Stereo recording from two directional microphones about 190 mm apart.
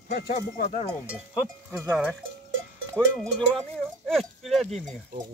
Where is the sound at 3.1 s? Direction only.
Centre (ahead or behind).